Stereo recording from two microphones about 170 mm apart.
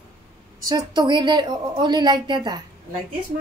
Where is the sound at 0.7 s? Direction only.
25° right (ahead or behind).